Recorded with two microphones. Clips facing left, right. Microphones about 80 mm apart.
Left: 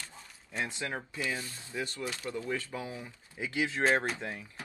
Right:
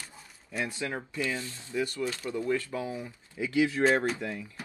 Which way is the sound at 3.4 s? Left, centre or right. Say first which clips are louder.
Right 6 dB; left.